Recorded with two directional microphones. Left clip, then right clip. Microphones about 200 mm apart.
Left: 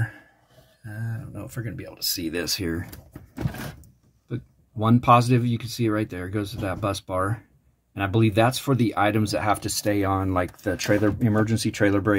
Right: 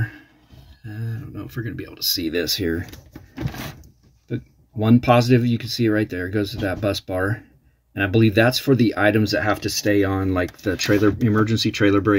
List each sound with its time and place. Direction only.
1.0 s speech: 5° left (ahead or behind)
4.3 s speech: centre (ahead or behind)